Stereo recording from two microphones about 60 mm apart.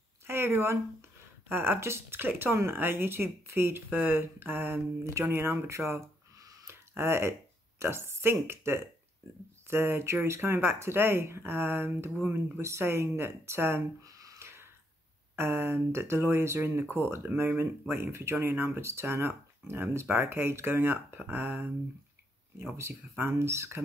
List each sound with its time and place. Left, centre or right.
0.3 s speech: right
3.9 s speech: right
5.7 s speech: right
6.7 s a sound: right
7.8 s speech: right
14.0 s a sound: right
14.4 s a sound: right
15.3 s speech: right
22.6 s speech: right